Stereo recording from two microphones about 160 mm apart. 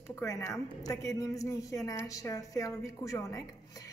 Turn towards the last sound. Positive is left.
turn(degrees=20)  # may be behind; listen again after turning